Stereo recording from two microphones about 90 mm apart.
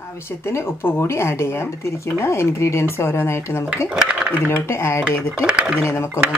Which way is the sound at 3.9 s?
10° right (ahead or behind).